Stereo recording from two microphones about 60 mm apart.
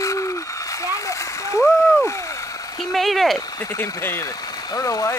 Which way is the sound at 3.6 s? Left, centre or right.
Left.